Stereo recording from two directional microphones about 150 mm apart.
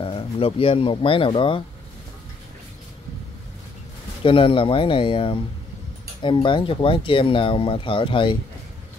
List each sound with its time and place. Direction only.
0.0 s speech: 40° left (ahead or behind)
4.2 s speech: 35° left (ahead or behind)